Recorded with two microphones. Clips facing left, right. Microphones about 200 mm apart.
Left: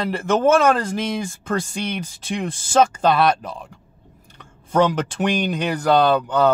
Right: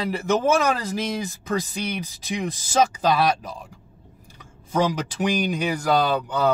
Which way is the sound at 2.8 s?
60° left (ahead or behind).